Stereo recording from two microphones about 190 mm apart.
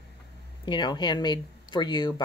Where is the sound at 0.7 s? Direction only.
25° left (ahead or behind).